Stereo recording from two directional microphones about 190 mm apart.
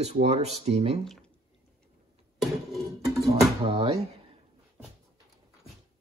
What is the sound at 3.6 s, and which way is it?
Speech, 30° right (ahead or behind).